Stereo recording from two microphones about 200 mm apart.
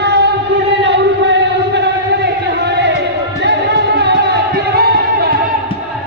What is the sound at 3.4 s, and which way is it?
Music, 55° right (ahead or behind).